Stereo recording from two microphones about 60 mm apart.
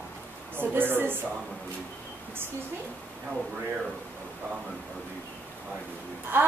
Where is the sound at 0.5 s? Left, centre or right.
Right.